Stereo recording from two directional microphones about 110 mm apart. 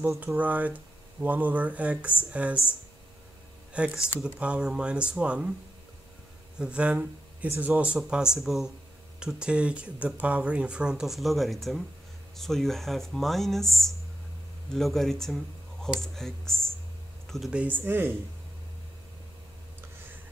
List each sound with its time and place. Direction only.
0.2 s speech: 15° right (ahead or behind)
3.7 s speech: 10° right (ahead or behind)
6.6 s speech: 10° right (ahead or behind)
17.6 s speech: 15° right (ahead or behind)